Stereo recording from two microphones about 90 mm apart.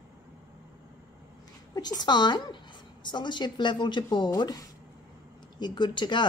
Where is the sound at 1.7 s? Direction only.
50° left (ahead or behind).